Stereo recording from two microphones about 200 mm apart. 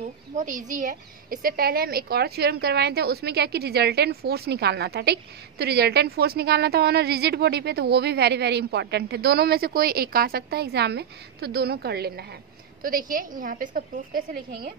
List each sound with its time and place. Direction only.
0.4 s a woman's voice: 40° right (ahead or behind)